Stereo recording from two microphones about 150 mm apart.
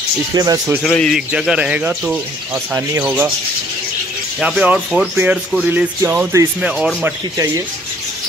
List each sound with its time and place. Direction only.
0.3 s speech: 25° right (ahead or behind)
0.8 s speech: 5° left (ahead or behind)
1.4 s music: 5° right (ahead or behind)
4.4 s speech: 5° right (ahead or behind)
5.1 s music: 10° right (ahead or behind)